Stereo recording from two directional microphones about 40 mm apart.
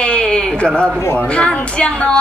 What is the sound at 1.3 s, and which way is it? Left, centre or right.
Speech, left.